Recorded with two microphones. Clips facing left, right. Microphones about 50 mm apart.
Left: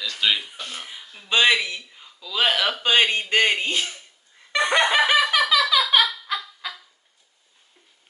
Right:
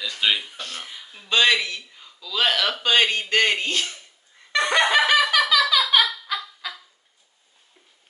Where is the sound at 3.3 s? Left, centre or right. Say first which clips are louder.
Even; centre.